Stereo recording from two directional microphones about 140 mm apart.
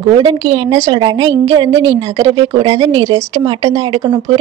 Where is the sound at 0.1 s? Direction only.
35° right (ahead or behind).